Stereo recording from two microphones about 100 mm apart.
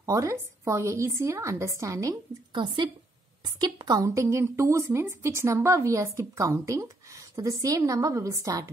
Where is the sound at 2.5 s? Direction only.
55° right (ahead or behind).